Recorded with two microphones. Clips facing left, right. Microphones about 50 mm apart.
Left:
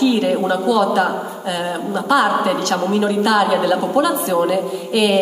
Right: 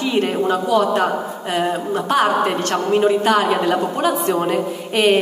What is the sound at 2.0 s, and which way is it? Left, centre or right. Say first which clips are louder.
A woman's voice: left 2 dB; right.